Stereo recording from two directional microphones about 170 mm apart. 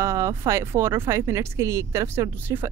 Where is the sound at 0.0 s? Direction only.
15° right (ahead or behind).